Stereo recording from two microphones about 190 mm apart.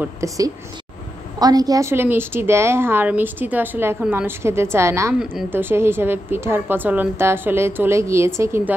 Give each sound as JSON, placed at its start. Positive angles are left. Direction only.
{"t": 0.0, "sound": "a woman's voice", "side_deg": -15}